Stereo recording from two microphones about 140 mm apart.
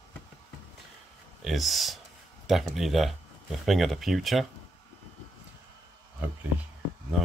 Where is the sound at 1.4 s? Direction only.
Centre (ahead or behind).